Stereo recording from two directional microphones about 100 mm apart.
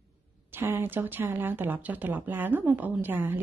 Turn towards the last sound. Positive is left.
turn(degrees=-20)  # may be behind; listen again after turning